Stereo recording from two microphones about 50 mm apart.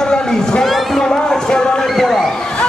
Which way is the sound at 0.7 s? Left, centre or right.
Centre.